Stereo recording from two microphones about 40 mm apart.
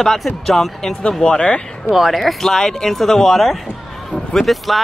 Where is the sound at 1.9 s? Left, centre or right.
Centre.